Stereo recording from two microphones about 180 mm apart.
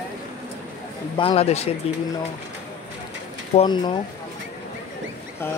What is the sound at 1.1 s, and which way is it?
Speech, 30° left (ahead or behind).